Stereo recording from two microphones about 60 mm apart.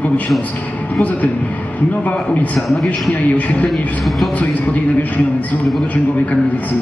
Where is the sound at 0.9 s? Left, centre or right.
Left.